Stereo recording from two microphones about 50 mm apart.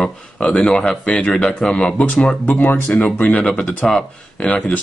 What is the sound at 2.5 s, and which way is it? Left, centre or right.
Speech, left.